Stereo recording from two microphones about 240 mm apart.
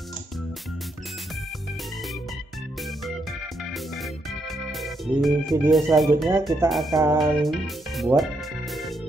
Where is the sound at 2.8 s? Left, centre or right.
Centre.